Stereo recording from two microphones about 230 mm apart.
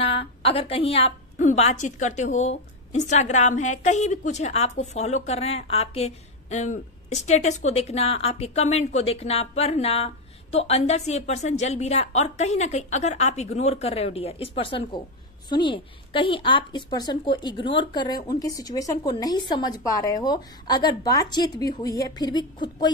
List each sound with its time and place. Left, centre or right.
0.0 s a woman's voice: left